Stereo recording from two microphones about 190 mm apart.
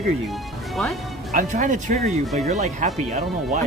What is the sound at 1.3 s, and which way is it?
Speech, 40° right (ahead or behind).